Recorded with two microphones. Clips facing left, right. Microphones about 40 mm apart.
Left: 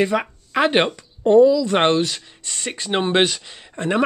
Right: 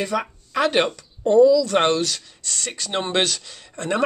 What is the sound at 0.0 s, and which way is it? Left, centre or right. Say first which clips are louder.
Speech: left 4 dB; left.